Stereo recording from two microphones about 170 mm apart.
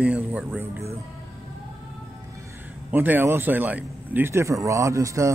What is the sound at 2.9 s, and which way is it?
A man's voice, 10° right (ahead or behind).